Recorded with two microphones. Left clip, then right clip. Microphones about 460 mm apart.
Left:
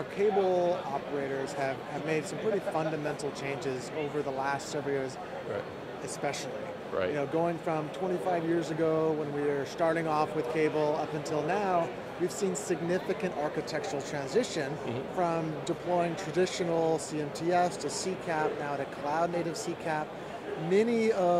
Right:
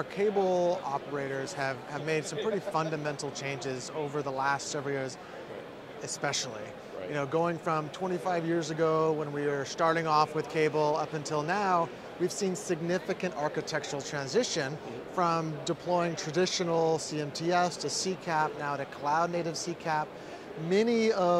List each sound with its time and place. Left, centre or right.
0.2 s speech: right
4.4 s speech: right
7.2 s speech: right
20.7 s speech: right